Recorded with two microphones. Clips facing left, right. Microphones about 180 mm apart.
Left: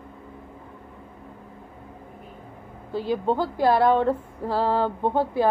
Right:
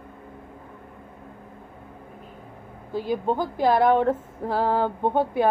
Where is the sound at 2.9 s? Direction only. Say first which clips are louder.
Left 1 dB; 15° right (ahead or behind).